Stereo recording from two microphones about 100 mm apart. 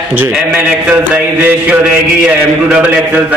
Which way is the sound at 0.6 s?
15° right (ahead or behind).